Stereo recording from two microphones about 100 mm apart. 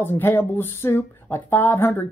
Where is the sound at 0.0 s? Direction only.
20° left (ahead or behind).